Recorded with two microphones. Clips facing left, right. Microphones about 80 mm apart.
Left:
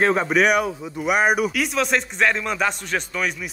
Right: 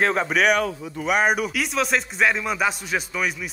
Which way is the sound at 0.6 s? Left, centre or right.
Centre.